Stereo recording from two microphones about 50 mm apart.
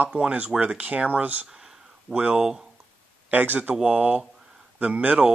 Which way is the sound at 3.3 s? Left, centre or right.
Right.